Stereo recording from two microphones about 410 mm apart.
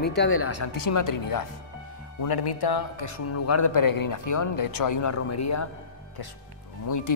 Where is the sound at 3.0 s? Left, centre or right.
Left.